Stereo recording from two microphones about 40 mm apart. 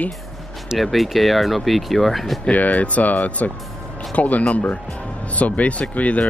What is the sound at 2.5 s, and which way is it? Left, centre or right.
Speech, left.